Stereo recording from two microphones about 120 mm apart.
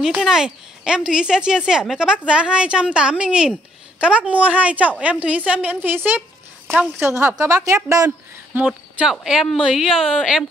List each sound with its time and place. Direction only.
0.0 s a woman's voice: 5° right (ahead or behind)
7.2 s a woman's voice: 25° right (ahead or behind)
8.5 s a woman's voice: 10° right (ahead or behind)